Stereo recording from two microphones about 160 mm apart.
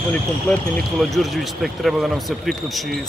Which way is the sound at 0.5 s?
Centre (ahead or behind).